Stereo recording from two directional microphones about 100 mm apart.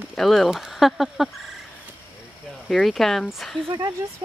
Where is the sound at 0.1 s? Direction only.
Centre (ahead or behind).